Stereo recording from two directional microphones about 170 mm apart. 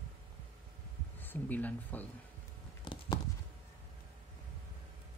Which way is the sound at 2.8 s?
25° left (ahead or behind).